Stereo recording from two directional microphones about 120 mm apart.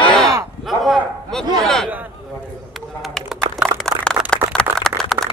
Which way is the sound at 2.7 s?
Centre (ahead or behind).